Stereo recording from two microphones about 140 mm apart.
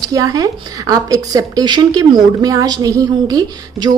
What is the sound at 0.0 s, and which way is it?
Speech, 25° right (ahead or behind).